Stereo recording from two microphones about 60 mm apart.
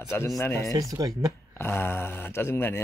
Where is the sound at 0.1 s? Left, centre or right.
Left.